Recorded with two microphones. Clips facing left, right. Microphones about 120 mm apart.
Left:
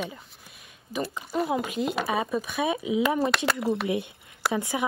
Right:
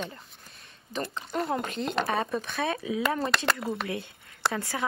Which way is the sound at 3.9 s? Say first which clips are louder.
Left 6 dB; 20° left (ahead or behind).